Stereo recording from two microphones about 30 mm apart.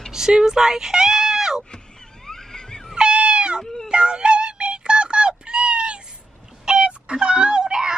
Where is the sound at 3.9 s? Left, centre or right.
Right.